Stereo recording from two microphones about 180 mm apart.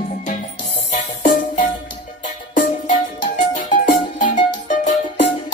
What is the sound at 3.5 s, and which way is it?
Music, 45° left (ahead or behind).